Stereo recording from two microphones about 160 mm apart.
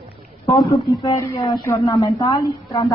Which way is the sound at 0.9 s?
20° left (ahead or behind).